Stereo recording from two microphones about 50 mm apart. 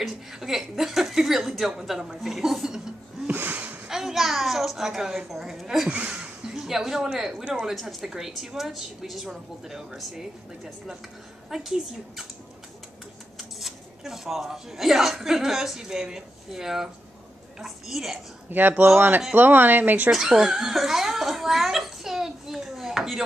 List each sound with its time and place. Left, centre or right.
0.0 s a woman's voice: centre
3.3 s a sound: right
3.8 s a woman's voice: centre
5.9 s a sound: right
6.5 s a woman's voice: centre
13.4 s a woman's voice: centre
18.5 s speech: right
20.1 s speech: centre